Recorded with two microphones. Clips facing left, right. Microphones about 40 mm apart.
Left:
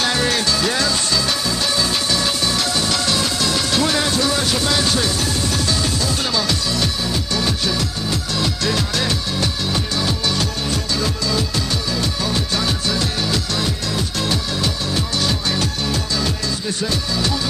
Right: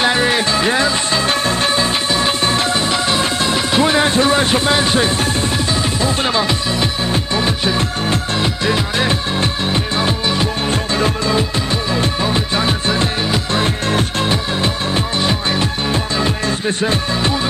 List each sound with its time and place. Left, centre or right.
0.0 s music: right
10.7 s music: right